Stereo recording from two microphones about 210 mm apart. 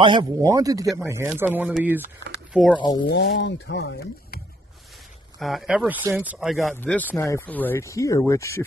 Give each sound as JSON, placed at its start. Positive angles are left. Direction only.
{"t": 0.0, "sound": "speech", "side_deg": -20}
{"t": 2.8, "sound": "speech", "side_deg": 20}
{"t": 3.1, "sound": "speech", "side_deg": 55}
{"t": 5.4, "sound": "speech", "side_deg": 0}